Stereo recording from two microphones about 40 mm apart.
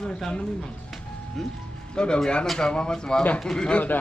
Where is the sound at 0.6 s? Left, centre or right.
Centre.